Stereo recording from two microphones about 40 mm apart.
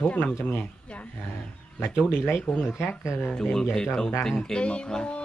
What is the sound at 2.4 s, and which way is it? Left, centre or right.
Speech, left.